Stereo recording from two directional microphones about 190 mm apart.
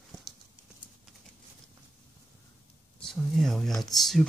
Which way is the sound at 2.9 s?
Centre (ahead or behind).